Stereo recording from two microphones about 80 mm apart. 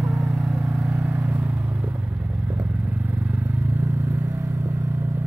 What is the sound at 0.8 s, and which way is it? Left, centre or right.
Vehicle, centre.